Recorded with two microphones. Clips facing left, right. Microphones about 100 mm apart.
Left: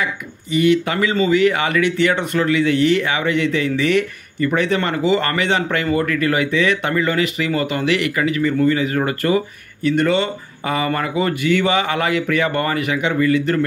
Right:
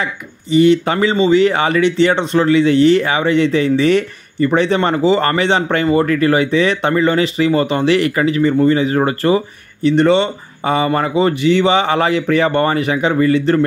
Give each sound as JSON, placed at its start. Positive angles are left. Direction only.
{"t": 0.0, "sound": "speech", "side_deg": -30}